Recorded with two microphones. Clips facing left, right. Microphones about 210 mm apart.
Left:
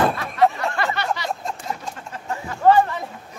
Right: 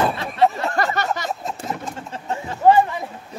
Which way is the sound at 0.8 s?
40° right (ahead or behind).